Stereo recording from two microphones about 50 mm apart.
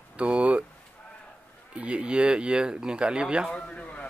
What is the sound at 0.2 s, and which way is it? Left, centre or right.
Speech, right.